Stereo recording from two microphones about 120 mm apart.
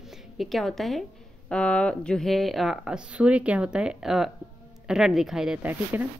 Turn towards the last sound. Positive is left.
turn(degrees=-10)  # may be behind; listen again after turning